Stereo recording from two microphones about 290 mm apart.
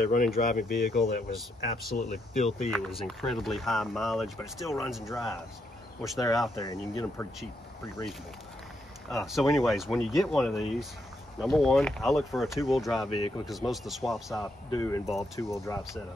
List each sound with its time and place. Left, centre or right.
0.0 s speech: left
0.7 s speech: centre
1.6 s speech: left
2.7 s speech: centre
9.1 s speech: centre
14.4 s speech: centre